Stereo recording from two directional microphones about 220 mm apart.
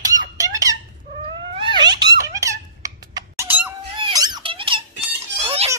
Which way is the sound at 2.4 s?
15° right (ahead or behind).